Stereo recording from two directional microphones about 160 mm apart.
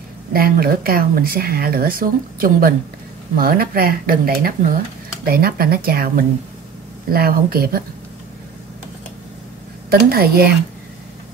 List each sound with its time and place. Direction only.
0.3 s speech: 65° right (ahead or behind)
9.8 s speech: 70° right (ahead or behind)